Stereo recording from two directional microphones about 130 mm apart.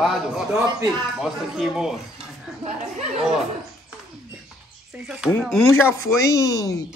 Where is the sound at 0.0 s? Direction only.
5° right (ahead or behind).